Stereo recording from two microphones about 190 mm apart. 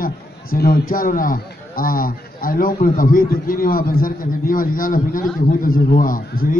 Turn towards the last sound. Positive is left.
turn(degrees=50)  # may be behind; listen again after turning